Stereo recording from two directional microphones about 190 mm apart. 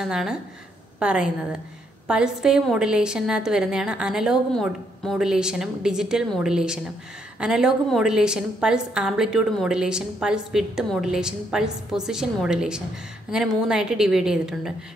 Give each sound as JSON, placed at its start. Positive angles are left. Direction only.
{"t": 0.0, "sound": "a woman's voice", "side_deg": -5}